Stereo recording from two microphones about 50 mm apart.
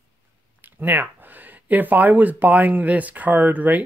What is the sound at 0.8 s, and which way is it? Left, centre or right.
Speech, right.